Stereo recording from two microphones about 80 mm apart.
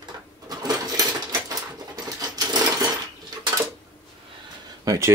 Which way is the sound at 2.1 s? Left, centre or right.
Right.